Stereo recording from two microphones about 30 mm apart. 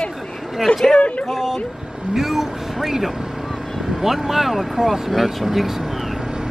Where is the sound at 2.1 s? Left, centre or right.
Centre.